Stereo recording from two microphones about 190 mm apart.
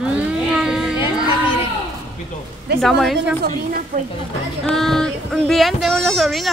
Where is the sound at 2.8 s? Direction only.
Centre (ahead or behind).